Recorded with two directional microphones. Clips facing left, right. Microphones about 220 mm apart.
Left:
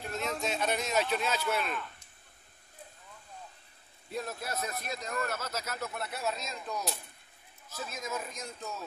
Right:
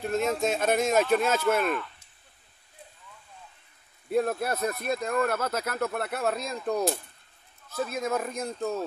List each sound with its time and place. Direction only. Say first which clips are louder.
0.4 s speech: right 7 dB; 50° right (ahead or behind)
4.1 s speech: right 11 dB; 60° right (ahead or behind)